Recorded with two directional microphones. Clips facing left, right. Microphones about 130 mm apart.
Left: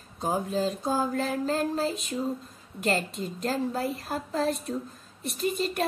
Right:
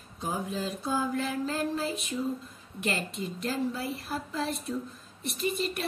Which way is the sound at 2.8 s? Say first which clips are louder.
Left 4 dB; 40° left (ahead or behind).